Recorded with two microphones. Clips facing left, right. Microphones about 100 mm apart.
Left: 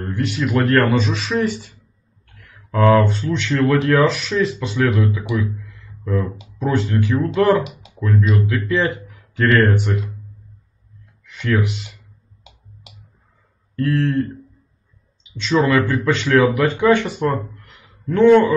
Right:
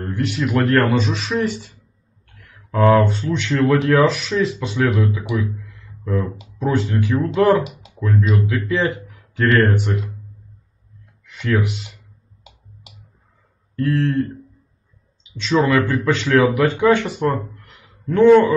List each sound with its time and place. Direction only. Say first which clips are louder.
0.2 s a man's voice: even; centre (ahead or behind)
2.7 s speech: even; 5° right (ahead or behind)
3.5 s a man's voice: even; 5° right (ahead or behind)
11.2 s speech: even; centre (ahead or behind)
13.7 s a man's voice: even; centre (ahead or behind)
15.4 s a man's voice: even; centre (ahead or behind)